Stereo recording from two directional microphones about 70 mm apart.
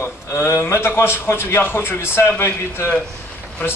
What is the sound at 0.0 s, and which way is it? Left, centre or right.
A man's voice, left.